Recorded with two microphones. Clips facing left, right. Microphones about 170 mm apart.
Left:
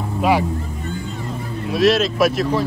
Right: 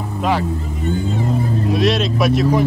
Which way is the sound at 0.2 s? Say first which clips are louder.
Left 2 dB; 10° left (ahead or behind).